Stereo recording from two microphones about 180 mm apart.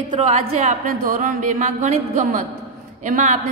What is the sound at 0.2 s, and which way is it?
A man's voice, 40° right (ahead or behind).